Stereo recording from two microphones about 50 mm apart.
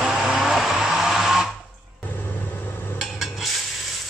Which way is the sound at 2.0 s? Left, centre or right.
Left.